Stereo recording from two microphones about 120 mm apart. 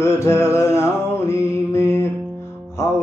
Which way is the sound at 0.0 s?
20° left (ahead or behind).